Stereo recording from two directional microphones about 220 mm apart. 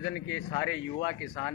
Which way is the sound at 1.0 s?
20° left (ahead or behind).